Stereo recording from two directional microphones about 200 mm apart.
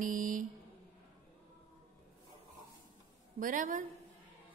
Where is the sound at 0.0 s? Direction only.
40° right (ahead or behind).